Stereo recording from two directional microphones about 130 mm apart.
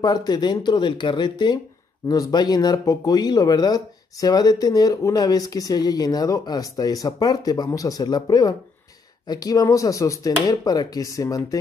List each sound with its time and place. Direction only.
0.0 s speech: 30° left (ahead or behind)